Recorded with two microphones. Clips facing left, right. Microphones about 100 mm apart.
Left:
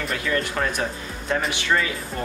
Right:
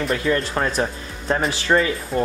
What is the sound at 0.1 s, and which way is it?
Speech, 30° right (ahead or behind).